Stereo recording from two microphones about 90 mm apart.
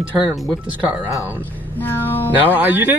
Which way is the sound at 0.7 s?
15° right (ahead or behind).